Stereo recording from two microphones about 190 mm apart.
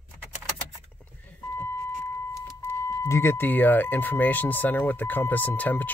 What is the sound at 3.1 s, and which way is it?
Speech, 15° left (ahead or behind).